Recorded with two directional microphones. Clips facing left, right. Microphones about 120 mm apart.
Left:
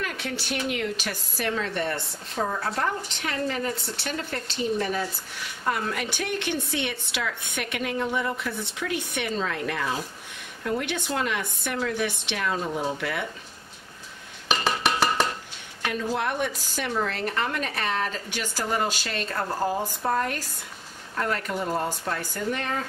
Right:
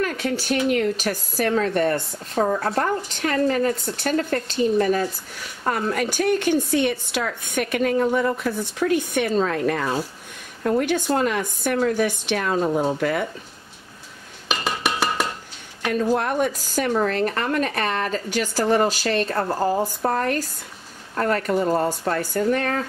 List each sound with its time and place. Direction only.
0.0 s a woman's voice: 45° right (ahead or behind)
14.6 s dishes: centre (ahead or behind)
15.9 s a woman's voice: 45° right (ahead or behind)